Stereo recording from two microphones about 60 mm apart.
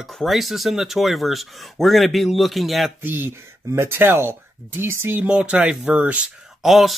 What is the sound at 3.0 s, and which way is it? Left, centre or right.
Speech, right.